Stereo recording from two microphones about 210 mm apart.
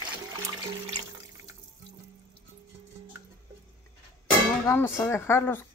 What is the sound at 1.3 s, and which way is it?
Water, 15° right (ahead or behind).